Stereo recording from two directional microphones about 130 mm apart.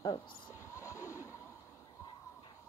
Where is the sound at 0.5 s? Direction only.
20° left (ahead or behind).